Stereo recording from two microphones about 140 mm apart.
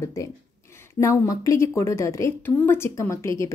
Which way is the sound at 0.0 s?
20° left (ahead or behind).